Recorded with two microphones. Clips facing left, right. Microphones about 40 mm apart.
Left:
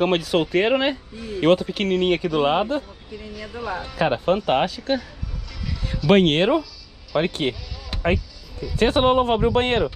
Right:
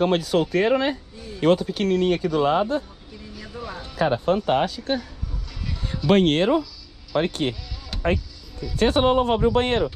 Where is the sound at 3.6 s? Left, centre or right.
Left.